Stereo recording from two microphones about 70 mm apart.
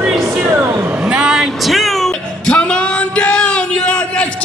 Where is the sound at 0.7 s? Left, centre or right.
Centre.